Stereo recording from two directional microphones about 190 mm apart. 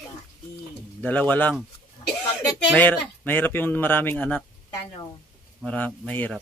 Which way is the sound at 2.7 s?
10° left (ahead or behind).